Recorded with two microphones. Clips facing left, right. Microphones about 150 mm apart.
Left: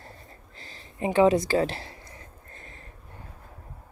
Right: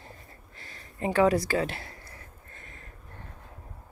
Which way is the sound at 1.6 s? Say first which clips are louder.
Left 4 dB; 30° left (ahead or behind).